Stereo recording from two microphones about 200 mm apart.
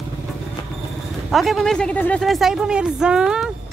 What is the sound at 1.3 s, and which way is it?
Speech, centre (ahead or behind).